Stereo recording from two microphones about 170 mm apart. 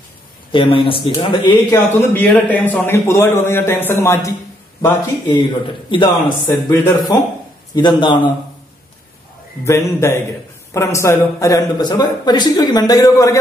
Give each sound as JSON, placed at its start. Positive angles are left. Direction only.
{"t": 0.5, "sound": "a man's voice", "side_deg": 30}
{"t": 1.5, "sound": "a man's voice", "side_deg": 10}
{"t": 5.2, "sound": "a man's voice", "side_deg": 30}
{"t": 9.7, "sound": "a man's voice", "side_deg": 15}